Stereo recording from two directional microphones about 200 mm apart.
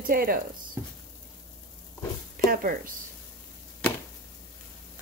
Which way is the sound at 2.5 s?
45° right (ahead or behind).